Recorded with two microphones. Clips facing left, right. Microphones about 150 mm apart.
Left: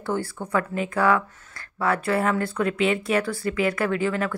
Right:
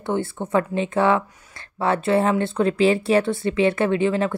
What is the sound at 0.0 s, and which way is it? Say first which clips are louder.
Speech: right 3 dB; 20° right (ahead or behind).